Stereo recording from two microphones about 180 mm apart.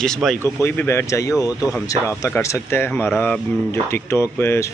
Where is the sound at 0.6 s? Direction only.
15° left (ahead or behind).